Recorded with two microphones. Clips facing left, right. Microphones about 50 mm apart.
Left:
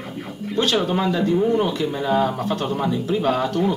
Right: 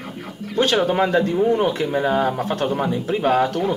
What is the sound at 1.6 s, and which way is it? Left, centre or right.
Speech, right.